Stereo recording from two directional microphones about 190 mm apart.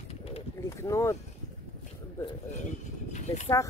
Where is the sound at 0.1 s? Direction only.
30° left (ahead or behind).